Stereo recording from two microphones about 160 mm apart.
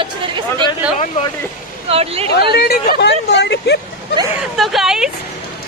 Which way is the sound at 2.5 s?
90° left.